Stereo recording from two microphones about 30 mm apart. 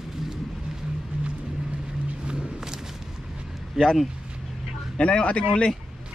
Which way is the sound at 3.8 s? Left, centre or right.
Centre.